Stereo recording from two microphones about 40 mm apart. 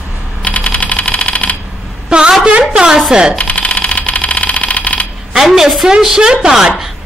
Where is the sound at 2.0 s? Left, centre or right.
Right.